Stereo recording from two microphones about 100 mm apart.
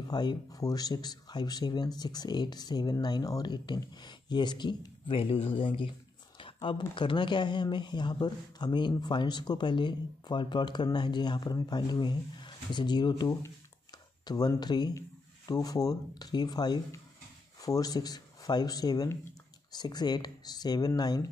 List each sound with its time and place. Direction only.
0.1 s speech: 45° left (ahead or behind)
5.1 s speech: 70° left (ahead or behind)
6.3 s a sound: 60° left (ahead or behind)
7.0 s speech: 50° left (ahead or behind)